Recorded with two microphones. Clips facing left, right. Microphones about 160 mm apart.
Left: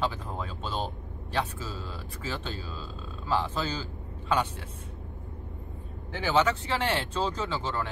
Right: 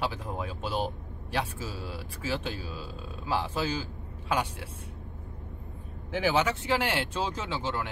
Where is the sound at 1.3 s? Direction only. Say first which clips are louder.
Left 1 dB; 10° right (ahead or behind).